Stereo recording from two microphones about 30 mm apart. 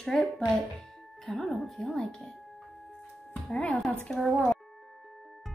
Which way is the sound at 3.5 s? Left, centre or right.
Left.